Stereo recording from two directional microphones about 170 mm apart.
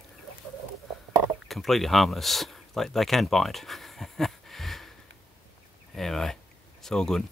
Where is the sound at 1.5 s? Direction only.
Centre (ahead or behind).